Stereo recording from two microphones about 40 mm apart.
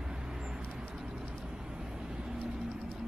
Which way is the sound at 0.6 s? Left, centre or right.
Right.